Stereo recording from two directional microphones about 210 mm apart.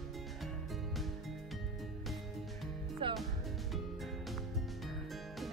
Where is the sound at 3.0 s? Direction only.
25° right (ahead or behind).